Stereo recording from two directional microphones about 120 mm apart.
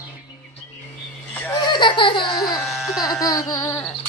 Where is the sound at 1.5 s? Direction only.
35° left (ahead or behind).